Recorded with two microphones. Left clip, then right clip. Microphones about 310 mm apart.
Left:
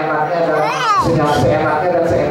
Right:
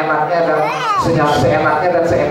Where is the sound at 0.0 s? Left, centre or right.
Centre.